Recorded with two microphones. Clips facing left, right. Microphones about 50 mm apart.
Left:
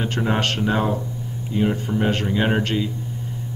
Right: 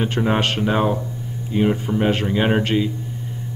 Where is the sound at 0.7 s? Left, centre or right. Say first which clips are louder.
Right 2 dB; right.